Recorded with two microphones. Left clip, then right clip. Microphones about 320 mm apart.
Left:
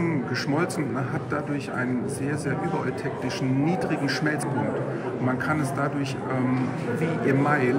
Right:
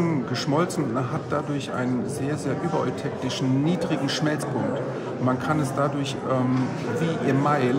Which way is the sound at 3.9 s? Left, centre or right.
Centre.